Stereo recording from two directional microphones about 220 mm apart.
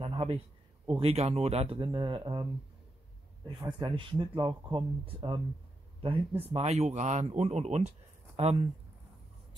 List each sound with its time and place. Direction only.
0.0 s speech: 25° right (ahead or behind)
3.4 s speech: 20° right (ahead or behind)